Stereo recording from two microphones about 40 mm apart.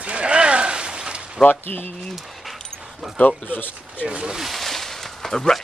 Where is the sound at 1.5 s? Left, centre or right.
Left.